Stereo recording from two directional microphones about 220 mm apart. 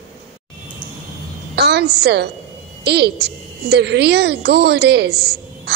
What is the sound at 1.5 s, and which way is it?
A woman's voice, 50° right (ahead or behind).